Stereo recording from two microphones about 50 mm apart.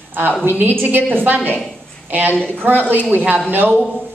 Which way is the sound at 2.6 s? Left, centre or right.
Right.